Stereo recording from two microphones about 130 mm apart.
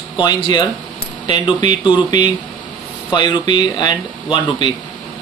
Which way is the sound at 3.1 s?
35° left (ahead or behind).